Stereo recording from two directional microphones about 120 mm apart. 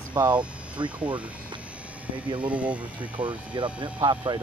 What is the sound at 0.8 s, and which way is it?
Speech, 10° right (ahead or behind).